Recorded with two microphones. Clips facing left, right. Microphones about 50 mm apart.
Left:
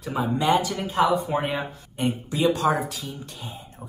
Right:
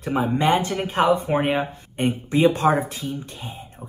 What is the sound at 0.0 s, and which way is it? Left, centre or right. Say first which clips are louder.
Speech: right 3 dB; right.